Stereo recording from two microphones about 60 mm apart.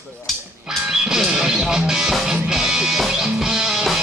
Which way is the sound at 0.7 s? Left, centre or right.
Centre.